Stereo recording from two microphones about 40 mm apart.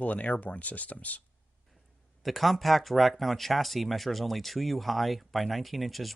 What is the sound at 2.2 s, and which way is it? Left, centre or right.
Speech, centre.